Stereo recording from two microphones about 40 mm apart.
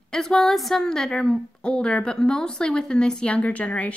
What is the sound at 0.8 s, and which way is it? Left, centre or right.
Speech, centre.